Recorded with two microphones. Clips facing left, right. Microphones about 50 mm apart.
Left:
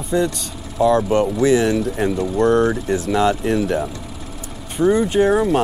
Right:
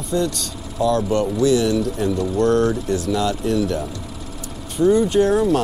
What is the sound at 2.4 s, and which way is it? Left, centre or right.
Speech, left.